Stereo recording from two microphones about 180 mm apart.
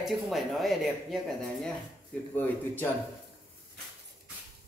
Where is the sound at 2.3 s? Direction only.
10° left (ahead or behind).